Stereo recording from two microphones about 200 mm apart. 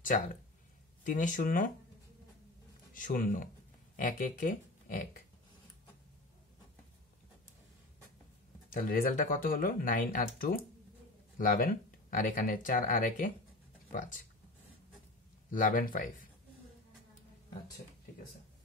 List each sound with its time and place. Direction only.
1.0 s speech: 40° left (ahead or behind)
2.9 s speech: 45° left (ahead or behind)
8.7 s speech: 45° left (ahead or behind)
15.5 s speech: 40° left (ahead or behind)